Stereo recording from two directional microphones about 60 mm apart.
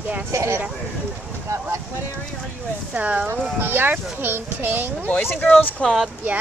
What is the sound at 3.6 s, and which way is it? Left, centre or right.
Speech, right.